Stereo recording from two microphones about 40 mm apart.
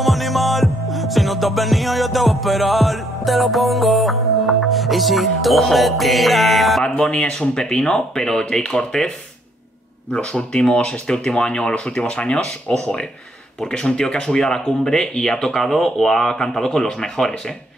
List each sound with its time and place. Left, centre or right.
0.0 s music: centre
6.8 s speech: left
10.1 s speech: left